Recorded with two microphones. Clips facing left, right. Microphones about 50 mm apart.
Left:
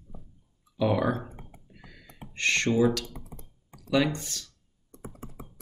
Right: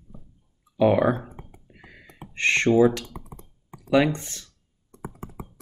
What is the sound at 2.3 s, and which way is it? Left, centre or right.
Computer keyboard, right.